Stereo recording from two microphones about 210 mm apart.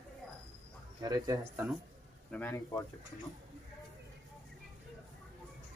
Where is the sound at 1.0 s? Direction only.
15° right (ahead or behind).